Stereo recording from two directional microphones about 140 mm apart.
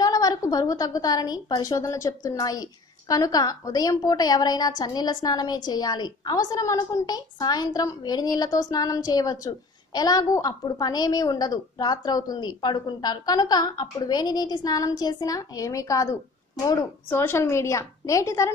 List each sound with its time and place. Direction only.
0.0 s a woman's voice: 25° left (ahead or behind)